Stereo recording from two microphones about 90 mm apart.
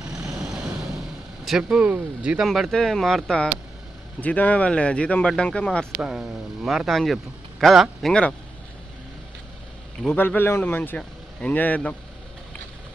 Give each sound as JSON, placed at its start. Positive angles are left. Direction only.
{"t": 0.4, "sound": "vehicle", "side_deg": -5}
{"t": 1.4, "sound": "speech", "side_deg": -5}
{"t": 2.4, "sound": "speech", "side_deg": 0}
{"t": 4.2, "sound": "speech", "side_deg": 15}
{"t": 5.9, "sound": "speech", "side_deg": -5}
{"t": 8.1, "sound": "speech", "side_deg": 10}
{"t": 10.0, "sound": "speech", "side_deg": 20}